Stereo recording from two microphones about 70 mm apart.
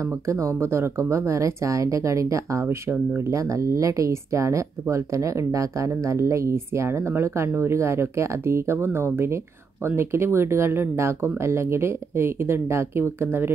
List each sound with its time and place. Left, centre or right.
0.0 s speech: right
2.6 s speech: right